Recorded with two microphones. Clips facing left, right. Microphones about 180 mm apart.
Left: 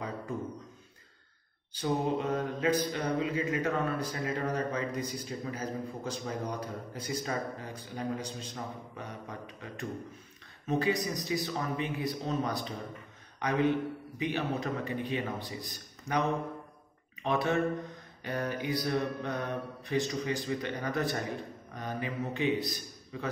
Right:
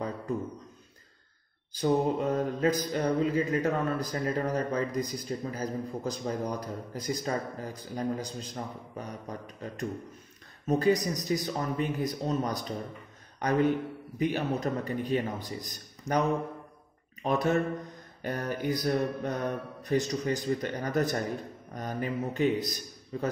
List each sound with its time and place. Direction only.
1.7 s speech: 40° right (ahead or behind)
10.7 s mantra: 40° right (ahead or behind)
17.2 s speech: 45° right (ahead or behind)
18.2 s mantra: 45° right (ahead or behind)